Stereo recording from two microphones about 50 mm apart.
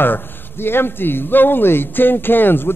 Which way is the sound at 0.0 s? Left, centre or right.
Left.